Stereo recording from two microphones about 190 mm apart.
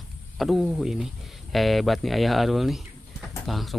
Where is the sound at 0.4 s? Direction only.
Centre (ahead or behind).